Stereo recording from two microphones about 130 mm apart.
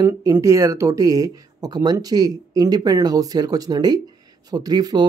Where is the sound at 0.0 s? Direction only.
25° right (ahead or behind).